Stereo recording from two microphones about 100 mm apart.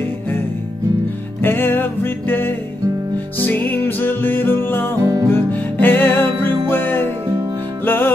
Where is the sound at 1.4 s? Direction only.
20° left (ahead or behind).